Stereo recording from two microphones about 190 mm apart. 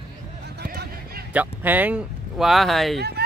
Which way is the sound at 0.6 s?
55° right (ahead or behind).